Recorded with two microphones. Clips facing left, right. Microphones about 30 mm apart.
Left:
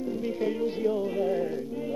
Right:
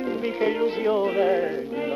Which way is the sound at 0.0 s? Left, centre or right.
Right.